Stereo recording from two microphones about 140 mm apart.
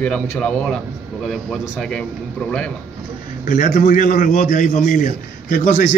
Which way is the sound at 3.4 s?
75° left (ahead or behind).